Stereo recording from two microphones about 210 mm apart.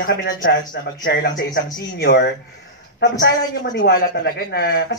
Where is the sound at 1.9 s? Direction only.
50° left (ahead or behind).